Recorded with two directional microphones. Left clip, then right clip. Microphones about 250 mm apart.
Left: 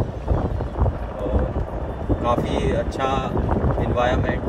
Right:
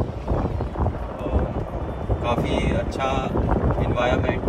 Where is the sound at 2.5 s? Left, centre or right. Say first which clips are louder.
Left 1 dB; centre.